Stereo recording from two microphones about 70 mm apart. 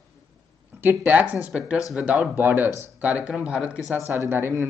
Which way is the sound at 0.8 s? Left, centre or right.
Right.